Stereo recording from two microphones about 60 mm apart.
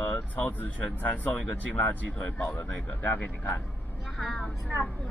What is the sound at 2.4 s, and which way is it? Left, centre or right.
Speech, left.